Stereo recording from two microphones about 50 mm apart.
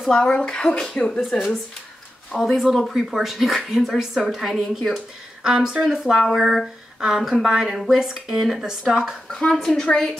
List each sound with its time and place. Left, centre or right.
0.0 s speech: centre
0.3 s speech: centre
1.3 s speech: centre
9.3 s a woman's voice: left